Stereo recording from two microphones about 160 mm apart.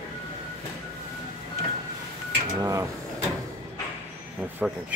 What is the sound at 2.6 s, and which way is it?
Mechanisms, 20° right (ahead or behind).